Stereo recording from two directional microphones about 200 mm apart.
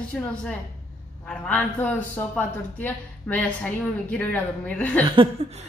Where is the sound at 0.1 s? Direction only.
5° left (ahead or behind).